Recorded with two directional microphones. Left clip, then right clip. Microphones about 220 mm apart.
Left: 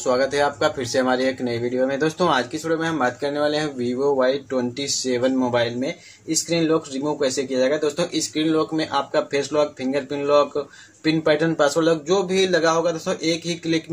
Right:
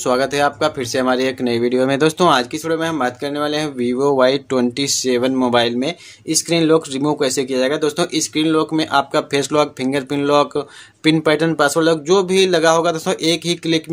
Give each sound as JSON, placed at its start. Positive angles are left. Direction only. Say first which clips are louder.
{"t": 0.0, "sound": "speech", "louder": "right 3 dB", "side_deg": -30}